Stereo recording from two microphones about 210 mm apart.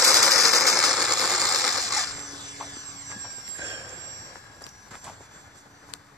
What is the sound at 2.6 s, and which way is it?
Vehicle, 15° right (ahead or behind).